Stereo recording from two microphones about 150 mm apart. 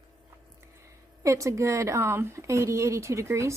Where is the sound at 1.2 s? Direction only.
20° right (ahead or behind).